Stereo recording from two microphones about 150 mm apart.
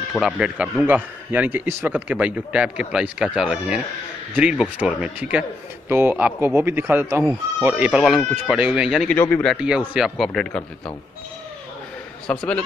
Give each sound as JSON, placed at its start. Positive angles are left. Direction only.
{"t": 0.1, "sound": "a man's voice", "side_deg": -5}
{"t": 9.1, "sound": "speech", "side_deg": 10}
{"t": 9.5, "sound": "speech", "side_deg": -5}
{"t": 12.3, "sound": "speech", "side_deg": 5}